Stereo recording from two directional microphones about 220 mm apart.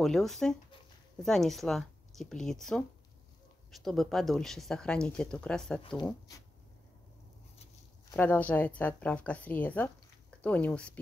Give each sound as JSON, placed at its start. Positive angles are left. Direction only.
{"t": 0.0, "sound": "speech", "side_deg": 0}
{"t": 8.1, "sound": "speech", "side_deg": 10}